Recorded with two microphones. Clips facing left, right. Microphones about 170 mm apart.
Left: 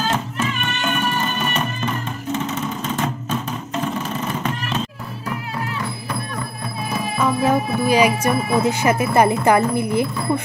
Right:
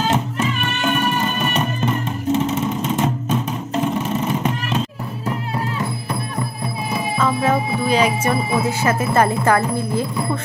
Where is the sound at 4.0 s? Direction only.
20° right (ahead or behind).